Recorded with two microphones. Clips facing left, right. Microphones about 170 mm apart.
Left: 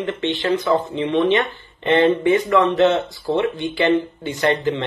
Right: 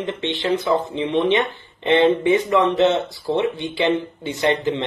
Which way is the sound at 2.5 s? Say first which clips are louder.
Left 1 dB; 15° right (ahead or behind).